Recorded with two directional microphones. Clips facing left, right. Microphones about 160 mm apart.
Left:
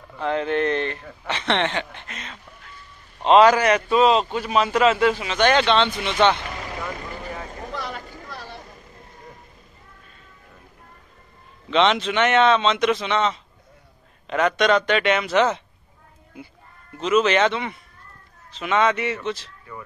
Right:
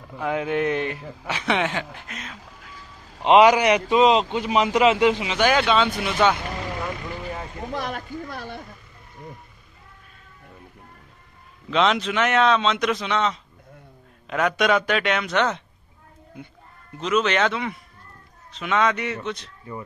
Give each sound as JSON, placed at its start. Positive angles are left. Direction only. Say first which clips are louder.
{"t": 0.2, "sound": "a man's voice", "louder": "left 1 dB", "side_deg": -10}
{"t": 2.3, "sound": "speech", "louder": "right 1 dB", "side_deg": -90}
{"t": 2.7, "sound": "a sound", "louder": "right 3 dB", "side_deg": -90}
{"t": 3.2, "sound": "a man's voice", "louder": "even", "side_deg": -15}
{"t": 7.7, "sound": "a sound", "louder": "right 5 dB", "side_deg": -50}
{"t": 11.7, "sound": "speech", "louder": "left 2 dB", "side_deg": 0}